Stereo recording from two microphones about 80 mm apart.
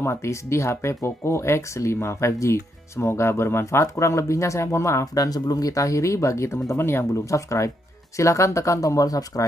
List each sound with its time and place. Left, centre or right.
0.0 s speech: left
5.0 s speech: left